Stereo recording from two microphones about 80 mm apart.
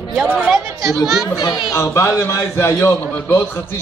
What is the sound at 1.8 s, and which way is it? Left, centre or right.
A man's voice, left.